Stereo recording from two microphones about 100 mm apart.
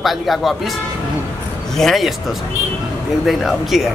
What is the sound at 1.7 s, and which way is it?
Speech, centre (ahead or behind).